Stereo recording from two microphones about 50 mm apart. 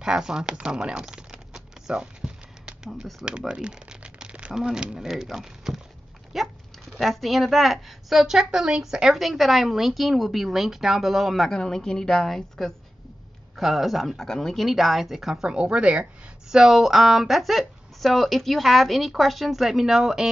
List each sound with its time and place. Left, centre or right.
0.0 s crumpling: centre
3.2 s a sound: centre
4.6 s speech: centre
11.5 s a woman's voice: centre
14.2 s speech: centre
15.4 s speech: centre
16.4 s speech: centre